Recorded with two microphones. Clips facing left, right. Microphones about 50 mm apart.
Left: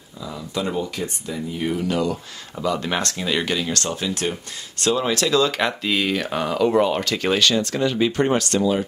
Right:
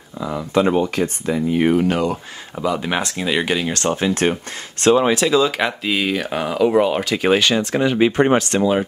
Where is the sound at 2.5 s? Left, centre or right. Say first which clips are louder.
Right 2 dB; centre.